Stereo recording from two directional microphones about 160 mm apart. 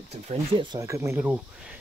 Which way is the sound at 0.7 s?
20° right (ahead or behind).